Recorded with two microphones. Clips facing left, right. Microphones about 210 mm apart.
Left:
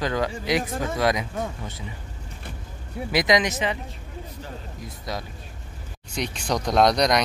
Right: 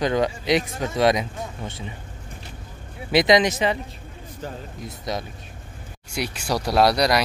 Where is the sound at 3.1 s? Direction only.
25° right (ahead or behind).